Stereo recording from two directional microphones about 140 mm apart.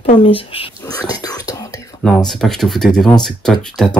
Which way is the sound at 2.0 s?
5° left (ahead or behind).